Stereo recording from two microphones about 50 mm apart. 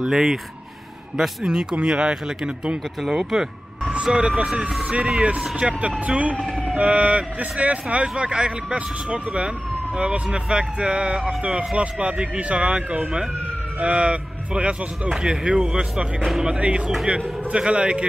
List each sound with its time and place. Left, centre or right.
0.0 s speech: centre
3.0 s speech: centre
3.8 s speech: right
13.0 s speech: centre
13.7 s speech: right